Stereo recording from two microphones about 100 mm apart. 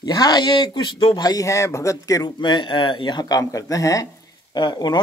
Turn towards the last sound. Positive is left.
turn(degrees=45)  # may be behind; listen again after turning